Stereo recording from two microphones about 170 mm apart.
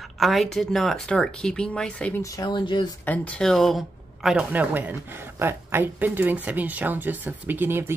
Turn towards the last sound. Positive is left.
turn(degrees=-10)  # may be behind; listen again after turning